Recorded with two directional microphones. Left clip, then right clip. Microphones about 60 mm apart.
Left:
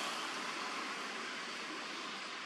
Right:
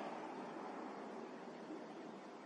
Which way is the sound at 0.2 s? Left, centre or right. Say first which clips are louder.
Left 8 dB; centre.